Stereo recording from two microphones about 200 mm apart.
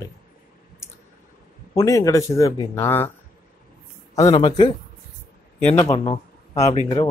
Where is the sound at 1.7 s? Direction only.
15° left (ahead or behind).